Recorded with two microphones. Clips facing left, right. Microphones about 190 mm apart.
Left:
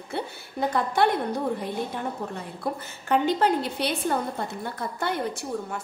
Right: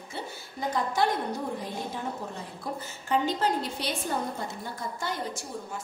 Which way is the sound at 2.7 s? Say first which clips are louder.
Left 5 dB; 60° left (ahead or behind).